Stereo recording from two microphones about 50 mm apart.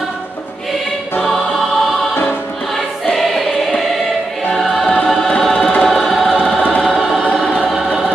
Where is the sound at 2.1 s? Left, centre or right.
Left.